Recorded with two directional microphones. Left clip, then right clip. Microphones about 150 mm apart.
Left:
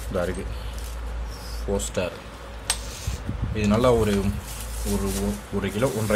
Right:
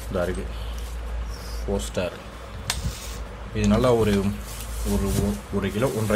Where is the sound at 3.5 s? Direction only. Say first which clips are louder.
Even; centre (ahead or behind).